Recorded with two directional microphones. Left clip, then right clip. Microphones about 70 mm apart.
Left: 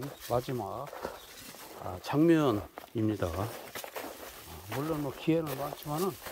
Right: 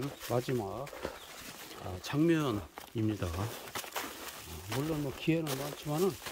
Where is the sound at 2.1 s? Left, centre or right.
Left.